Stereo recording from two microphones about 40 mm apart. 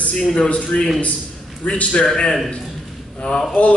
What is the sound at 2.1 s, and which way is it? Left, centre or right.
A man's voice, centre.